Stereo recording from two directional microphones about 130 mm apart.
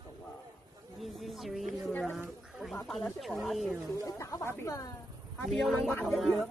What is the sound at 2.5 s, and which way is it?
Bird, centre (ahead or behind).